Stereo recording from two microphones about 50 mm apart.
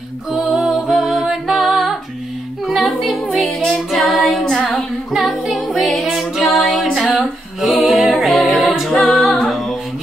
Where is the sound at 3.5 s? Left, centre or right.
Centre.